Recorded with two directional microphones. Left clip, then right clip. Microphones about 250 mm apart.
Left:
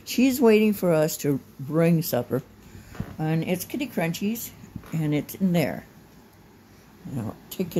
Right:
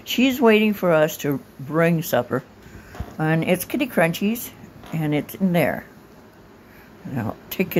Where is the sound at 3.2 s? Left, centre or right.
Centre.